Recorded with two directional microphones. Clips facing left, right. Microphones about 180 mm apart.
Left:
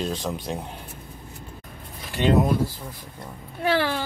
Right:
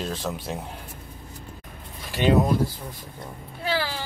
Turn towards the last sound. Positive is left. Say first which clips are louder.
# left 5 dB
turn(degrees=55)  # may be behind; listen again after turning